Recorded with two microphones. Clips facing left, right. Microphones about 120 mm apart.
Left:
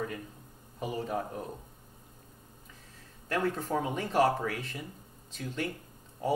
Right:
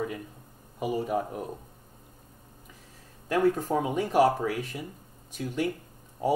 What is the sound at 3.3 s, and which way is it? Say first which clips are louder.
Speech: right 6 dB; 15° right (ahead or behind).